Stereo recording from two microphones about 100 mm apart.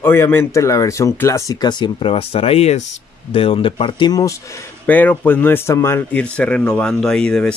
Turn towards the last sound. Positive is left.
turn(degrees=5)  # may be behind; listen again after turning